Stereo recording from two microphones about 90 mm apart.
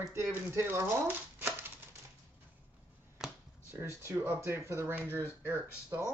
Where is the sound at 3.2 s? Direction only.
5° right (ahead or behind).